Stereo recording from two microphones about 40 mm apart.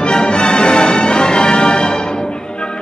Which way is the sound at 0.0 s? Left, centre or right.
Left.